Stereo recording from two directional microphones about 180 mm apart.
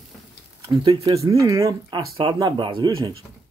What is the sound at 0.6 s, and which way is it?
Speech, 25° right (ahead or behind).